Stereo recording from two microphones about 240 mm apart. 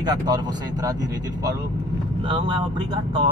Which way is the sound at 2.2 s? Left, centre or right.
Right.